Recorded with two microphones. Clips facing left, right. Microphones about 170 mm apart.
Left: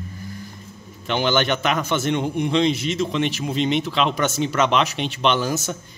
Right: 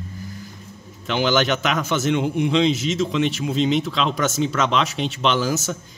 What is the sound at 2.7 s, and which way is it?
Speech, 60° left (ahead or behind).